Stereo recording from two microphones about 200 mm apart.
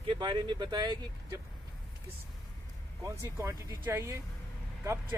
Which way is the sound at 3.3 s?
15° right (ahead or behind).